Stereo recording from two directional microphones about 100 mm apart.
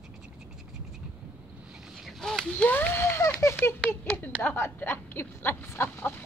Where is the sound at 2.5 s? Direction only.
15° left (ahead or behind).